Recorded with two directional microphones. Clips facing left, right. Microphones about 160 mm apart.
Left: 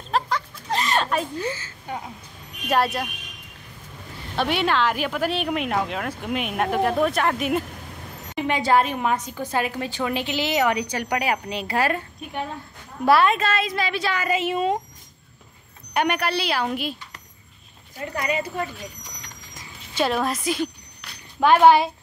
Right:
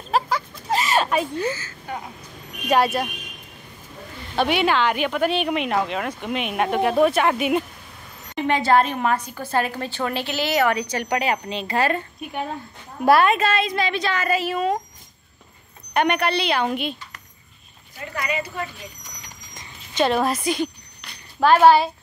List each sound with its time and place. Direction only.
0.1 s a sound: 5° right (ahead or behind)
1.5 s speech: 25° left (ahead or behind)
2.7 s speech: centre (ahead or behind)
4.4 s speech: centre (ahead or behind)
8.4 s a woman's voice: 10° left (ahead or behind)
13.0 s a woman's voice: 50° right (ahead or behind)
13.3 s a woman's voice: centre (ahead or behind); by 14.8 s 20° left (ahead or behind)
15.9 s speech: 5° left (ahead or behind)
17.9 s speech: 35° left (ahead or behind)
19.5 s a sound: 5° left (ahead or behind)
21.4 s a woman's voice: 15° left (ahead or behind)